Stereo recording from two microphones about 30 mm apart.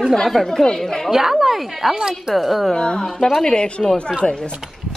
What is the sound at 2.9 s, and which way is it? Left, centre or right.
Speech, centre.